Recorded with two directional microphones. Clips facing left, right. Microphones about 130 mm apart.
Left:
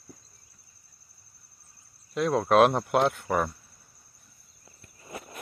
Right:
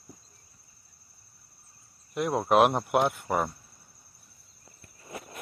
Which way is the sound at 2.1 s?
20° right (ahead or behind).